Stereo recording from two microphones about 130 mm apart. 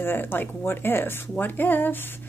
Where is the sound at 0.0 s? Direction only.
15° left (ahead or behind).